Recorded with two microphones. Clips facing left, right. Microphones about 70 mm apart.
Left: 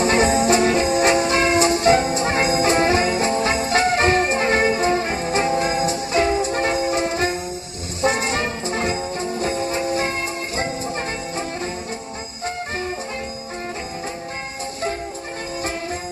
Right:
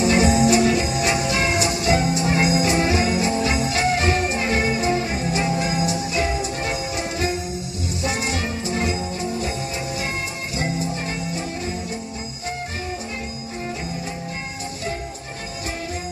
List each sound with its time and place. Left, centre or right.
0.0 s music: left